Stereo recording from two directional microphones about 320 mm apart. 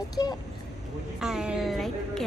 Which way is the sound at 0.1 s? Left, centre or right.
Centre.